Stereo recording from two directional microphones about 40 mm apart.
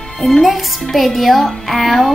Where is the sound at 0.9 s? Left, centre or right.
Centre.